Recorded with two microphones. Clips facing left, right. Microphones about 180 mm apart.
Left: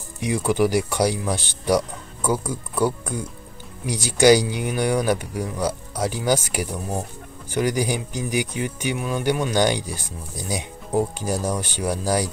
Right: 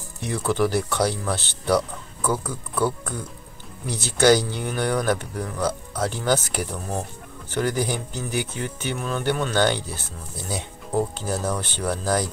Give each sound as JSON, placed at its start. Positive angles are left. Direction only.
{"t": 0.2, "sound": "speech", "side_deg": 10}